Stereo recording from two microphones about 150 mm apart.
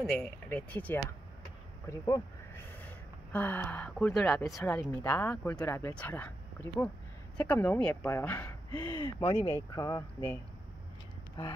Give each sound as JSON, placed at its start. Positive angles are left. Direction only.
{"t": 0.1, "sound": "speech", "side_deg": 10}
{"t": 1.9, "sound": "a sound", "side_deg": 20}
{"t": 3.3, "sound": "speech", "side_deg": 10}